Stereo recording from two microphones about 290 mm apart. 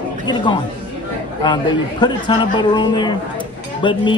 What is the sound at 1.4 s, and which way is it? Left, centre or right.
A man's voice, centre.